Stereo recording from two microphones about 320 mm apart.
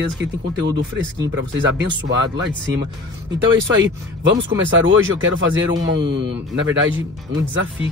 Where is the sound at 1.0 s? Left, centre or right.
Right.